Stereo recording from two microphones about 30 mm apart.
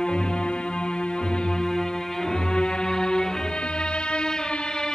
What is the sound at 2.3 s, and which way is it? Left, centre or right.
Music, left.